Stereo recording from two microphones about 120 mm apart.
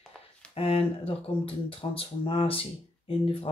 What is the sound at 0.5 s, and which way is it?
Speech, 55° left (ahead or behind).